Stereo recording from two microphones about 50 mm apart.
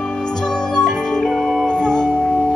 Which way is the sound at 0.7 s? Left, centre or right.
Centre.